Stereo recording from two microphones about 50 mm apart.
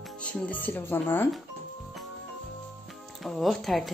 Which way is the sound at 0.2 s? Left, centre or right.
Left.